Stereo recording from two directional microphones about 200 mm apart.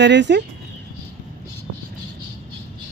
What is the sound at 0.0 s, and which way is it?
Speech, 60° right (ahead or behind).